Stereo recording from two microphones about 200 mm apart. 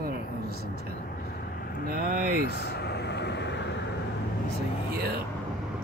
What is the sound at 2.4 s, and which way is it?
Speech, 55° left (ahead or behind).